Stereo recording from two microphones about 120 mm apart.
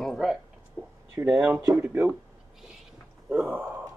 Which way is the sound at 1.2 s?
20° right (ahead or behind).